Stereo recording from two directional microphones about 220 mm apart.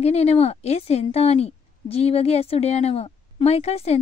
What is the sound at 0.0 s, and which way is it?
A woman's voice, 30° left (ahead or behind).